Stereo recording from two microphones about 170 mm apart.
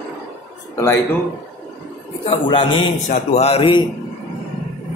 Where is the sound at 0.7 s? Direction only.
20° left (ahead or behind).